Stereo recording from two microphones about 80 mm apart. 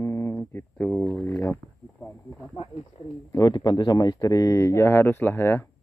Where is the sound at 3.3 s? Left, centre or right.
Left.